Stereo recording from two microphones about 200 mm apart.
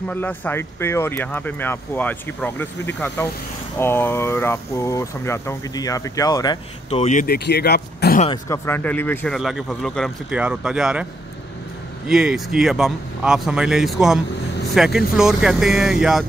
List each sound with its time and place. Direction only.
0.1 s speech: 10° left (ahead or behind); by 8.2 s 55° left (ahead or behind)
8.5 s speech: 10° left (ahead or behind)
9.4 s speech: centre (ahead or behind)
12.1 s speech: 5° right (ahead or behind)